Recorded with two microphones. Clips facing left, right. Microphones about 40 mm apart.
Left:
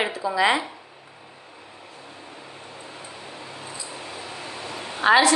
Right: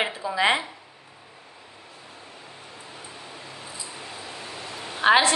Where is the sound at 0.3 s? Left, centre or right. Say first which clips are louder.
Left 1 dB; right.